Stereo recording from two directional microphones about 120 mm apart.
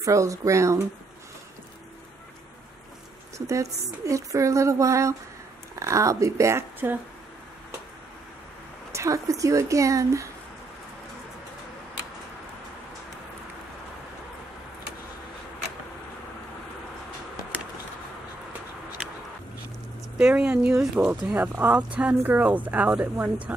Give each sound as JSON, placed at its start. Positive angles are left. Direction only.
{"t": 0.0, "sound": "a woman's voice", "side_deg": -25}
{"t": 3.3, "sound": "a woman's voice", "side_deg": -25}
{"t": 8.9, "sound": "a woman's voice", "side_deg": -25}
{"t": 20.2, "sound": "speech", "side_deg": -10}